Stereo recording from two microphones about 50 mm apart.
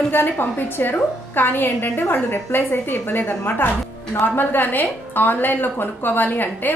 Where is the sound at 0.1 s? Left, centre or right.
Left.